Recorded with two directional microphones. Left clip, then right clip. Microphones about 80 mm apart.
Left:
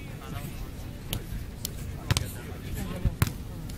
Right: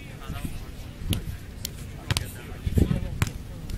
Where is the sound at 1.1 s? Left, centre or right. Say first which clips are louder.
Right 4 dB; centre.